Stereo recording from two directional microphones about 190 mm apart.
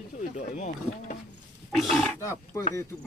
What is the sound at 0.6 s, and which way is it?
Speech, 40° left (ahead or behind).